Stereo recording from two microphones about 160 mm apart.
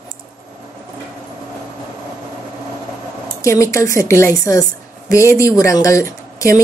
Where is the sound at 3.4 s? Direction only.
20° left (ahead or behind).